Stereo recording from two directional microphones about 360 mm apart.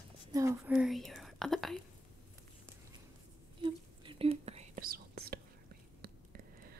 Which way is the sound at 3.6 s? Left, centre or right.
Centre.